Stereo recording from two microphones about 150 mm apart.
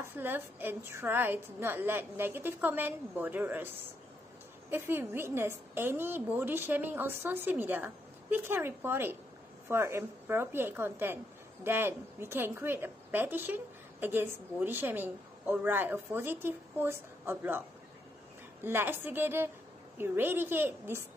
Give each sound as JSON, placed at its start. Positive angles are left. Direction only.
{"t": 0.0, "sound": "a woman's voice", "side_deg": -15}